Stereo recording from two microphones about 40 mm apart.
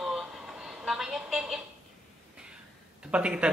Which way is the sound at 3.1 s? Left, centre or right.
Right.